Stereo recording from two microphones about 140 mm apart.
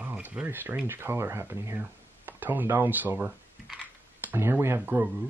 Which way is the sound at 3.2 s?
5° right (ahead or behind).